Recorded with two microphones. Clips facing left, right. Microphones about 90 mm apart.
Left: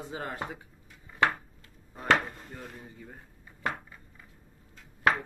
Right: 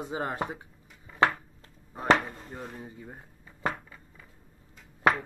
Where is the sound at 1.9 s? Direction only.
25° right (ahead or behind).